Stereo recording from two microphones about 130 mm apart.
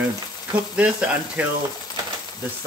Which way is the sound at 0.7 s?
10° right (ahead or behind).